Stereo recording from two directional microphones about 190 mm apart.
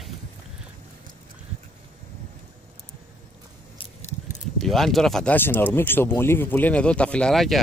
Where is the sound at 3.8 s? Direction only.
40° left (ahead or behind).